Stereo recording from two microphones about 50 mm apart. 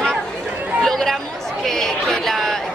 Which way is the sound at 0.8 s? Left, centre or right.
Centre.